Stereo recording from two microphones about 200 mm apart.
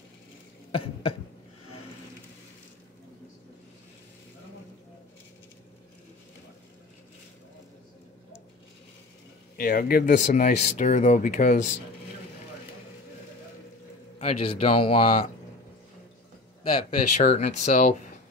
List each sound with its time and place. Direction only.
0.7 s cough: 25° left (ahead or behind)
9.6 s speech: 45° left (ahead or behind)
14.1 s speech: 30° left (ahead or behind)
16.6 s speech: 35° left (ahead or behind)